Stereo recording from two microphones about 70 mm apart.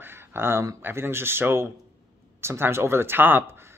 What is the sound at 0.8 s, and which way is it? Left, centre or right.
Speech, right.